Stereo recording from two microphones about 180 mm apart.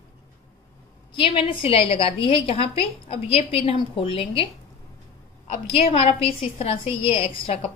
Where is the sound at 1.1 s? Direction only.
30° left (ahead or behind).